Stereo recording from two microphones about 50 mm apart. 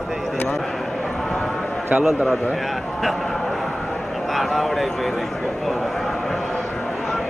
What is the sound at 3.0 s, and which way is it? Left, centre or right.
Vehicle, centre.